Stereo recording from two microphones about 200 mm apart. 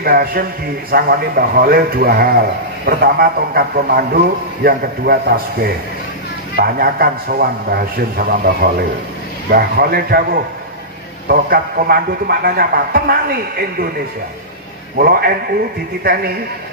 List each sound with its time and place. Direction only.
0.0 s a man's voice: 50° right (ahead or behind)
15.0 s a man's voice: 50° right (ahead or behind)